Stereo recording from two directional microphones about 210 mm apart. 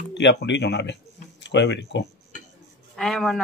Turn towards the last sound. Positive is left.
turn(degrees=0)  # may be behind; listen again after turning